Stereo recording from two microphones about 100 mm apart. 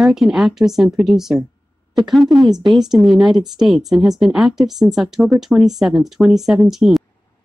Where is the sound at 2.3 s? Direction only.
45° right (ahead or behind).